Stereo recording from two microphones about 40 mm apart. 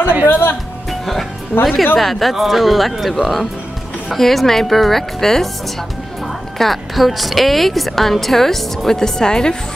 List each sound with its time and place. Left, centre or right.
0.3 s speech: left
1.6 s a woman's voice: centre